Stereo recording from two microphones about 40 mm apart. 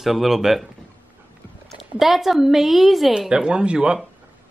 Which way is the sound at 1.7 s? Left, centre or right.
Centre.